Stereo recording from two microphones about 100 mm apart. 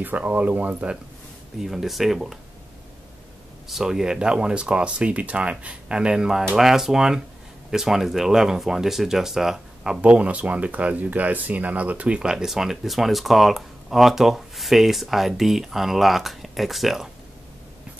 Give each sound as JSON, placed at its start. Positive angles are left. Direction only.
{"t": 0.0, "sound": "speech", "side_deg": -15}
{"t": 1.6, "sound": "speech", "side_deg": 0}
{"t": 3.6, "sound": "speech", "side_deg": -5}